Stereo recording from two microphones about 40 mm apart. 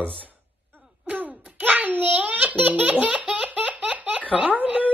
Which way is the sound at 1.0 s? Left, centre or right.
Right.